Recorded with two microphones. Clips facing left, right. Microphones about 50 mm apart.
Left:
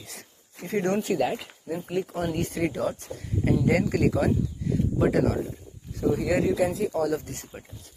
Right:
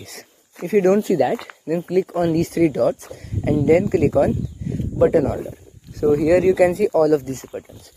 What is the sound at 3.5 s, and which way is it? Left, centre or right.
Speech, right.